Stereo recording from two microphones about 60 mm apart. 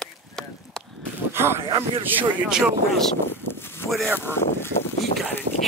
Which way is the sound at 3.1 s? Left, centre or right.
Left.